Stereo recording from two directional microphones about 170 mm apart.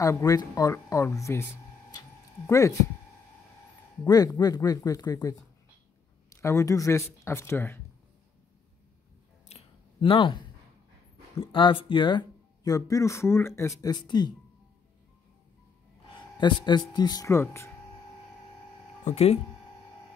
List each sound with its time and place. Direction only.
0.0 s speech: 20° left (ahead or behind)
4.0 s speech: 20° left (ahead or behind)
9.5 s a sound: 35° left (ahead or behind)
11.3 s speech: 30° left (ahead or behind)
16.1 s a sound: 25° left (ahead or behind)
16.9 s speech: 25° left (ahead or behind)
19.0 s speech: 40° left (ahead or behind)